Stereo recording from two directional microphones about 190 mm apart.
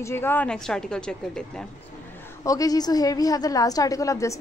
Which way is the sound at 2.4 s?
20° left (ahead or behind).